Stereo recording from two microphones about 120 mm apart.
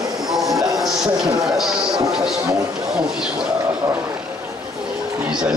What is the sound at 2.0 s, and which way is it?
Speech, 5° right (ahead or behind).